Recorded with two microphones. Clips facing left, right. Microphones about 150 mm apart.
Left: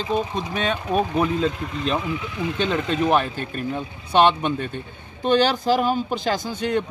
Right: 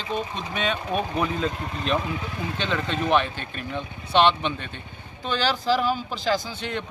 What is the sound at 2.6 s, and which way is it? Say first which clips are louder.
A man's voice: left 5 dB; 40° left (ahead or behind).